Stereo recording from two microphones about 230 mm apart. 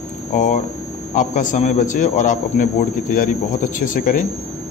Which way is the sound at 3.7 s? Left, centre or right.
Left.